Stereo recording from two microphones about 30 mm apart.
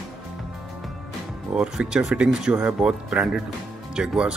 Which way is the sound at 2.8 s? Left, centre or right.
Right.